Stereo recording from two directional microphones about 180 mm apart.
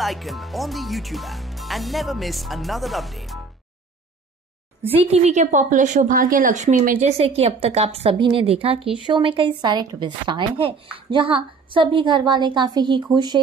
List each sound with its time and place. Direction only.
0.0 s speech: centre (ahead or behind)
4.9 s a woman's voice: 35° right (ahead or behind)